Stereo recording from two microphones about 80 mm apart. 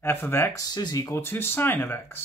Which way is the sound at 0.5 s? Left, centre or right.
Left.